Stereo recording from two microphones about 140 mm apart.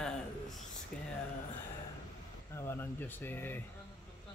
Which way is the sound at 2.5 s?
15° left (ahead or behind).